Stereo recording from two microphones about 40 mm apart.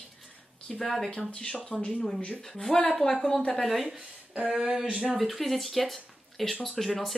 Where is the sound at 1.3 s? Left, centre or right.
Centre.